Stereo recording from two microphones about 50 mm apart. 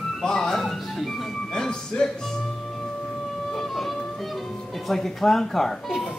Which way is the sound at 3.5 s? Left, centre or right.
Centre.